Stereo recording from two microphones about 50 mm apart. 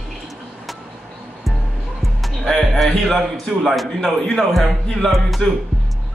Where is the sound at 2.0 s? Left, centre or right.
Centre.